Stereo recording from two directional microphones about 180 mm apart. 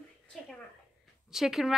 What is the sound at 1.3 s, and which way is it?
Speech, centre (ahead or behind).